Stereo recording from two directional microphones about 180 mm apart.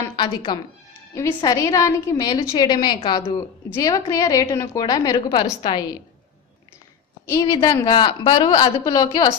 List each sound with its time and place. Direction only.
0.0 s a woman's voice: 25° left (ahead or behind)
7.2 s a woman's voice: 20° left (ahead or behind)